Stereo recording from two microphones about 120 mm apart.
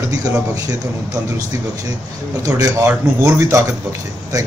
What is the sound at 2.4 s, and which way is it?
Speech, 30° right (ahead or behind).